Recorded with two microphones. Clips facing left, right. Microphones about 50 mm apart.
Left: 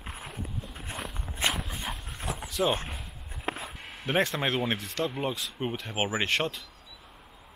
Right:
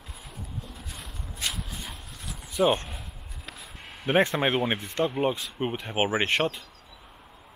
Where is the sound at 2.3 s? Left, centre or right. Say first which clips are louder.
Left 8 dB; left.